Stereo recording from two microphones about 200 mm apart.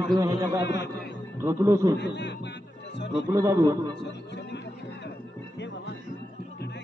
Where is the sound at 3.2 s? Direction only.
15° right (ahead or behind).